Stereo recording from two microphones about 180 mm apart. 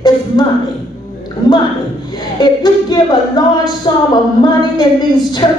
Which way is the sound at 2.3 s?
25° left (ahead or behind).